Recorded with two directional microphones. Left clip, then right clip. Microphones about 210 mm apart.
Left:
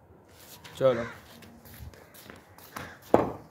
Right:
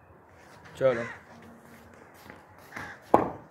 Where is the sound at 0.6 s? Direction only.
45° left (ahead or behind).